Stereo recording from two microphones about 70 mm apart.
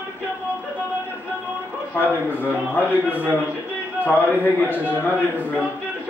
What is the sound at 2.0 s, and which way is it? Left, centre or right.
A man's voice, left.